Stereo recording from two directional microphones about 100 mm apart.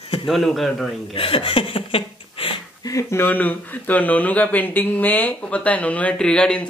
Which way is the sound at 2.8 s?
30° left (ahead or behind).